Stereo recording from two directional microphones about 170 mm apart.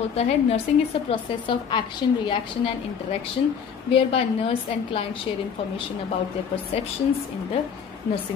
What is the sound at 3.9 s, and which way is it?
Speech, 35° left (ahead or behind).